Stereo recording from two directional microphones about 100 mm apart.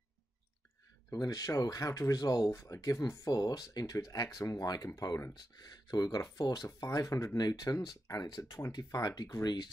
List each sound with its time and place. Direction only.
1.1 s speech: 40° left (ahead or behind)